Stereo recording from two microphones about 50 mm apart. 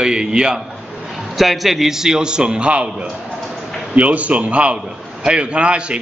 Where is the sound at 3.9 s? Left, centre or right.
Right.